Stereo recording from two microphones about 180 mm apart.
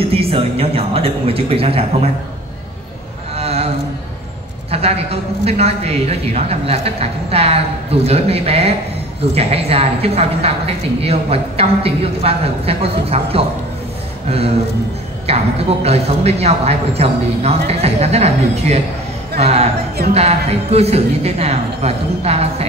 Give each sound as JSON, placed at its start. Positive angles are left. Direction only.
{"t": 0.0, "sound": "a woman's voice", "side_deg": -30}
{"t": 3.3, "sound": "a sound", "side_deg": -35}
{"t": 4.6, "sound": "a woman's voice", "side_deg": -35}
{"t": 15.2, "sound": "a woman's voice", "side_deg": -35}